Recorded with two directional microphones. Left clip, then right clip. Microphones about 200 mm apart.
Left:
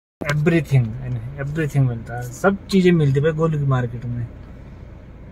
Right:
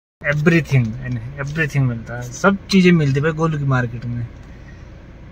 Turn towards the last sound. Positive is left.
turn(degrees=-15)  # may be behind; listen again after turning